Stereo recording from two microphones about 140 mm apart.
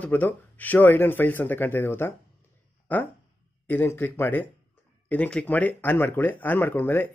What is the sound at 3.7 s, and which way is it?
Speech, 15° left (ahead or behind).